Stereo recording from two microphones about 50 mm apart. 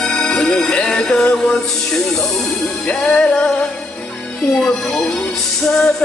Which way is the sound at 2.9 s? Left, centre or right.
Centre.